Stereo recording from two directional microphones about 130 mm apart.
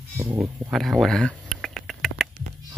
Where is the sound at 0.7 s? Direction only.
Centre (ahead or behind).